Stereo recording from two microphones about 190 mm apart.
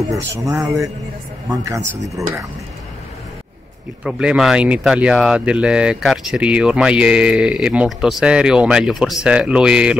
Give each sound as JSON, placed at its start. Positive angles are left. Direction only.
{"t": 0.3, "sound": "speech", "side_deg": -15}
{"t": 4.0, "sound": "speech", "side_deg": -5}